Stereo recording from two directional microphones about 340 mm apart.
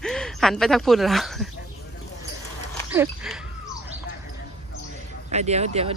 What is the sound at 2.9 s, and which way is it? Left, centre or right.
Speech, centre.